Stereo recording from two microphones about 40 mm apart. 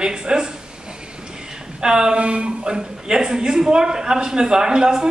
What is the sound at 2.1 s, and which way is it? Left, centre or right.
A man's voice, right.